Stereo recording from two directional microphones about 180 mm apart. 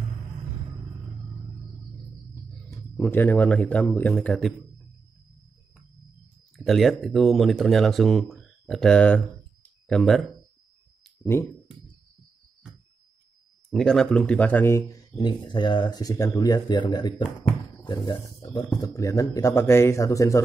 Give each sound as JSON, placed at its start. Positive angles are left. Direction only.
{"t": 3.0, "sound": "a man's voice", "side_deg": 10}
{"t": 6.5, "sound": "speech", "side_deg": 0}
{"t": 13.7, "sound": "a man's voice", "side_deg": 5}